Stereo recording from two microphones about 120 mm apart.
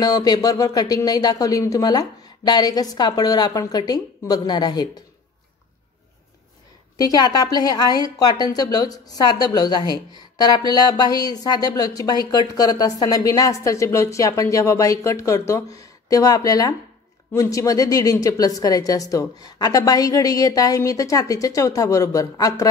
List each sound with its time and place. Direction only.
0.0 s speech: 35° left (ahead or behind)
7.0 s a woman's voice: 35° left (ahead or behind)